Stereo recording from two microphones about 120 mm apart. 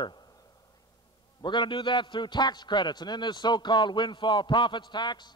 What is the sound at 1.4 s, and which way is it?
A man's voice, 40° left (ahead or behind).